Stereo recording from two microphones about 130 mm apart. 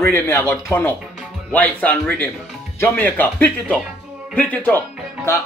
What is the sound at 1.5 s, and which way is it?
Speech, 10° left (ahead or behind).